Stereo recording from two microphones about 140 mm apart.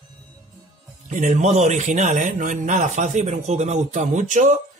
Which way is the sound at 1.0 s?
65° right (ahead or behind).